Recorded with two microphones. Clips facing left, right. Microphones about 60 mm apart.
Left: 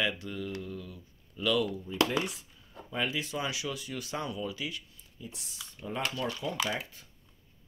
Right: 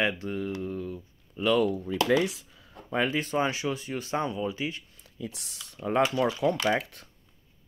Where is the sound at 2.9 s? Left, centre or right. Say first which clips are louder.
Right 6 dB; right.